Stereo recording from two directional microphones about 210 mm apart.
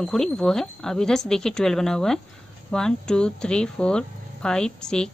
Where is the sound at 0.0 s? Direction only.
5° left (ahead or behind).